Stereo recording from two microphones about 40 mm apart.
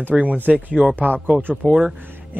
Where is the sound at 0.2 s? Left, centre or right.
Right.